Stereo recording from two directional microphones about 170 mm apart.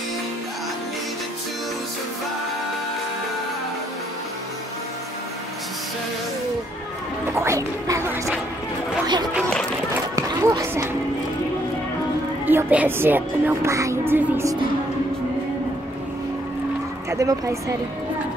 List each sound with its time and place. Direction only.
7.3 s music: 15° right (ahead or behind)
10.1 s a sound: 20° right (ahead or behind)
12.4 s a woman's voice: 10° right (ahead or behind)
17.1 s speech: 20° right (ahead or behind)